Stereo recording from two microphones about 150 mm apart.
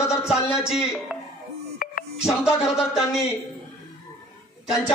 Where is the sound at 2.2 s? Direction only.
5° right (ahead or behind).